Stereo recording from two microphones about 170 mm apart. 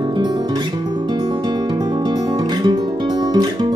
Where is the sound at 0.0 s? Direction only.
25° right (ahead or behind).